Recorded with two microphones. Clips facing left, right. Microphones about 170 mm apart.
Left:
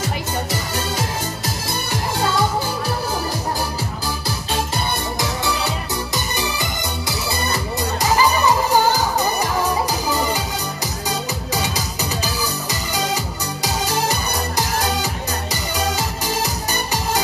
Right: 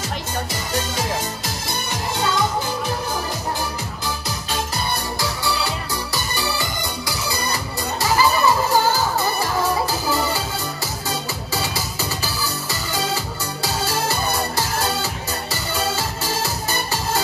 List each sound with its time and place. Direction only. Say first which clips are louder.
8.0 s music: even; 15° left (ahead or behind)
11.1 s music: left 3 dB; 15° left (ahead or behind)
16.4 s music: left 1 dB; 15° left (ahead or behind)